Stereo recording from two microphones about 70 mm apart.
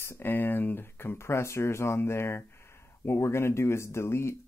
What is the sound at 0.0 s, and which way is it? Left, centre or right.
Speech, left.